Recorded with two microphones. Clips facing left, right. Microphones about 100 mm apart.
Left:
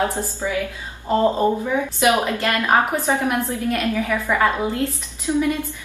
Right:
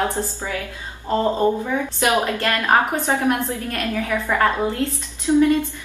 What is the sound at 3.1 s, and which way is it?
Speech, 15° left (ahead or behind).